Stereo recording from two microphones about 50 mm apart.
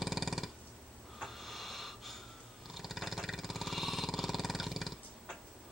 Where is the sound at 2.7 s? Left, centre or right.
Centre.